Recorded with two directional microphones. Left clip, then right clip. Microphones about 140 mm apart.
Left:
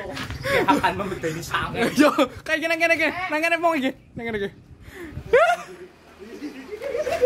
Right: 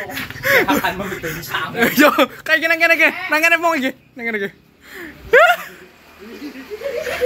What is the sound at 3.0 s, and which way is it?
Speech, 10° right (ahead or behind).